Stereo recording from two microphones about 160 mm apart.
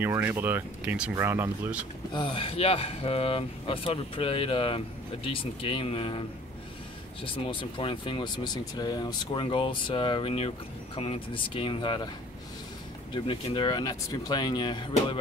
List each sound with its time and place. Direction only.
0.0 s speech: 15° right (ahead or behind)
2.1 s speech: 35° left (ahead or behind)
7.2 s speech: 30° left (ahead or behind)
13.1 s speech: 30° left (ahead or behind)